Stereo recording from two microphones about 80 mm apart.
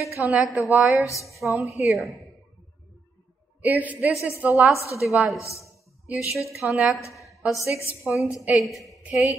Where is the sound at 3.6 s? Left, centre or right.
Right.